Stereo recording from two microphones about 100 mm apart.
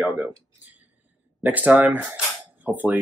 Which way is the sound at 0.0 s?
15° right (ahead or behind).